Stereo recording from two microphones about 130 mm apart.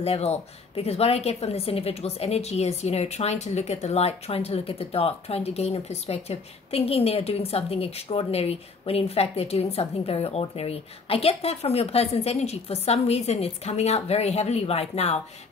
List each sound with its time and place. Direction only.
0.0 s a woman's voice: 50° left (ahead or behind)